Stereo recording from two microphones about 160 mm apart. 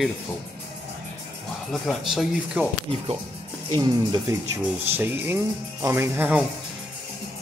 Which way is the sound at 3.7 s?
25° right (ahead or behind).